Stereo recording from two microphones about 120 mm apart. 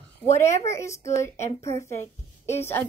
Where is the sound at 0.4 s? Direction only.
25° left (ahead or behind).